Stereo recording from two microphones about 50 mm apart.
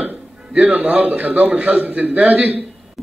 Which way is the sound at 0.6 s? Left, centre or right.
Right.